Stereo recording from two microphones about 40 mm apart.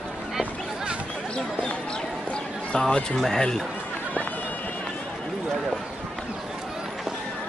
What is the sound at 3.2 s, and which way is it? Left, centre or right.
Speech, centre.